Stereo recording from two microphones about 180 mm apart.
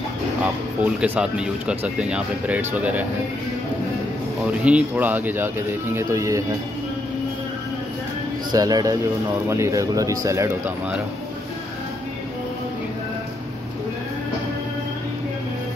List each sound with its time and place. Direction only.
0.8 s speech: 5° right (ahead or behind)
4.6 s speech: 10° right (ahead or behind)
8.5 s speech: 20° right (ahead or behind)